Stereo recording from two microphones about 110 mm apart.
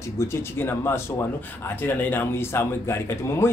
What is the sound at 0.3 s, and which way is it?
A man's voice, 20° left (ahead or behind).